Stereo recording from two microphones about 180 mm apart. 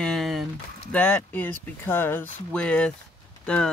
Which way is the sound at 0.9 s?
5° left (ahead or behind).